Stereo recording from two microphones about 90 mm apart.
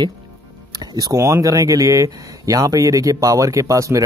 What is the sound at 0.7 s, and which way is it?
Speech, 40° right (ahead or behind).